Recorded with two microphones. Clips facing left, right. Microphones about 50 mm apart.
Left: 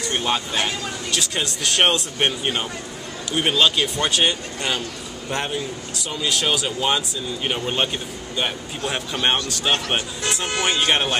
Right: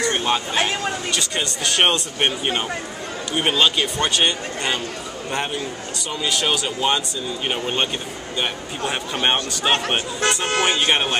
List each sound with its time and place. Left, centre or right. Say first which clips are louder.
0.1 s speech: right 2 dB; centre
1.1 s speech: even; centre
5.9 s speech: even; centre
9.7 s speech: right 2 dB; centre